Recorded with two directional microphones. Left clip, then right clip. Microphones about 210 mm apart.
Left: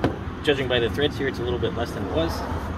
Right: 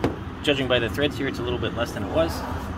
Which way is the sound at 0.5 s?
45° right (ahead or behind).